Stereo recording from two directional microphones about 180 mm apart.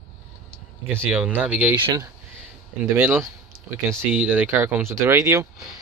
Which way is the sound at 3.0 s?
15° right (ahead or behind).